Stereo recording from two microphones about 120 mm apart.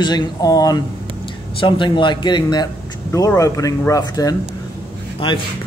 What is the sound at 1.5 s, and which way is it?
Speech, 45° left (ahead or behind).